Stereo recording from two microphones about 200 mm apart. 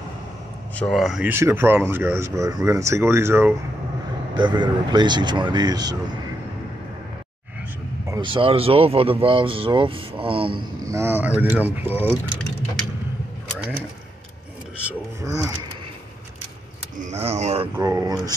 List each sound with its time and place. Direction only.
0.7 s speech: centre (ahead or behind)
1.3 s speech: 10° right (ahead or behind)
4.4 s speech: 25° right (ahead or behind)
8.1 s speech: 25° right (ahead or behind)
10.9 s speech: 10° right (ahead or behind)
14.9 s a sound: 15° right (ahead or behind)
17.0 s speech: 30° right (ahead or behind)
17.7 s speech: 20° right (ahead or behind)